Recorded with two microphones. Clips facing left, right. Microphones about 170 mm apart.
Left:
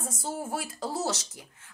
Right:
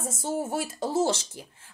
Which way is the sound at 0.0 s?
25° right (ahead or behind).